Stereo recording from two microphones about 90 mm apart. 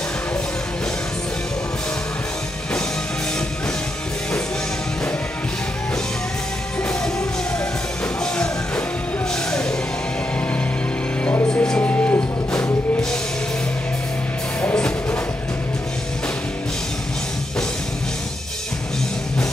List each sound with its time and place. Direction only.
8.2 s music: 10° left (ahead or behind)
11.4 s music: 10° left (ahead or behind)
14.6 s music: 10° left (ahead or behind)